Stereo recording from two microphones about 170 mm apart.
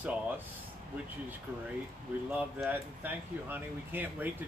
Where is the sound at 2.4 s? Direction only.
10° right (ahead or behind).